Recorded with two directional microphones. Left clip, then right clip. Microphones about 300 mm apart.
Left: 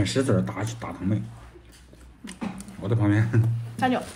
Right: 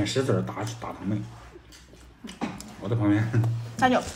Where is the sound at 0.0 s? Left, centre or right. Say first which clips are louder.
Left 1 dB; left.